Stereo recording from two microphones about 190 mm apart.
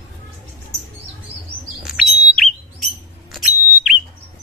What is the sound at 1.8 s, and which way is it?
Alarm, centre (ahead or behind).